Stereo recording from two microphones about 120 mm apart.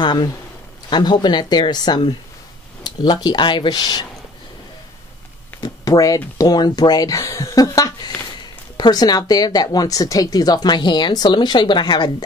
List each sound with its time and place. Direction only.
0.0 s speech: 40° left (ahead or behind)
5.6 s speech: 30° left (ahead or behind)